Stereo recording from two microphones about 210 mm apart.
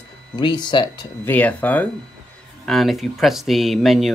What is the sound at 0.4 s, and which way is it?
Speech, 20° left (ahead or behind).